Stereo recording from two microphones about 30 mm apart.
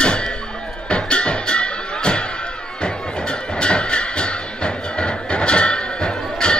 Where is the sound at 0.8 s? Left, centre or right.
Left.